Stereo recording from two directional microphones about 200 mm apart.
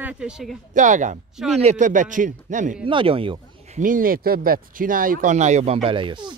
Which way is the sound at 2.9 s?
25° right (ahead or behind).